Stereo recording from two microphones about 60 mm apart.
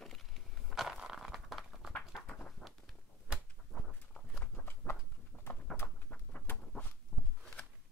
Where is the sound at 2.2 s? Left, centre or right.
Left.